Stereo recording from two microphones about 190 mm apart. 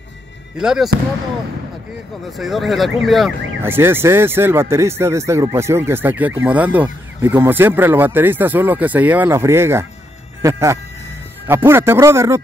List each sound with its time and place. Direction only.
0.6 s speech: 5° right (ahead or behind)
2.3 s speech: centre (ahead or behind)
3.6 s speech: 10° right (ahead or behind)